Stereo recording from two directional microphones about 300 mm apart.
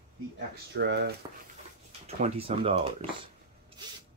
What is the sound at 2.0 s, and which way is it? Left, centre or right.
Speech, centre.